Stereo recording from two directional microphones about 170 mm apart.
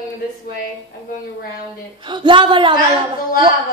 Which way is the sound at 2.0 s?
30° right (ahead or behind).